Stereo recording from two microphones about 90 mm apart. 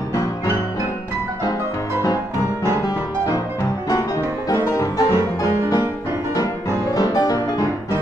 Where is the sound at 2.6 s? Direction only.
45° left (ahead or behind).